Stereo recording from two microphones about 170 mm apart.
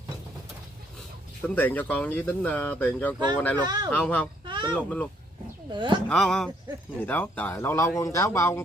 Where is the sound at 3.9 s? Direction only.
10° left (ahead or behind).